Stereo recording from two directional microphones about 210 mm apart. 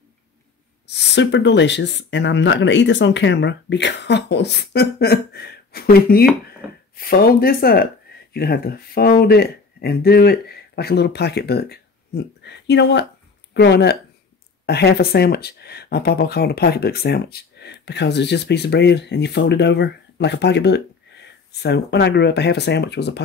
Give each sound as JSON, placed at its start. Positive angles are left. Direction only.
{"t": 0.8, "sound": "speech", "side_deg": 55}